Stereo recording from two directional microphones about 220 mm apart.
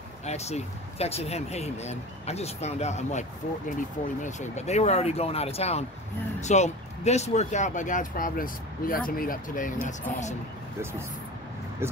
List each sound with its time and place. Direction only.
0.2 s speech: 30° left (ahead or behind)
11.8 s speech: 10° right (ahead or behind)